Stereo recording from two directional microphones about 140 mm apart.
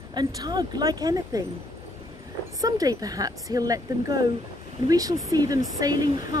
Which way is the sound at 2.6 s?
25° right (ahead or behind).